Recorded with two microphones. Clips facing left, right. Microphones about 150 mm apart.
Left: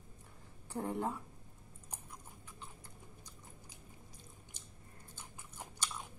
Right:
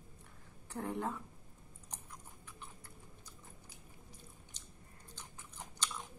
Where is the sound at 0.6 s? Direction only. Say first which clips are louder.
Left 1 dB; 15° left (ahead or behind).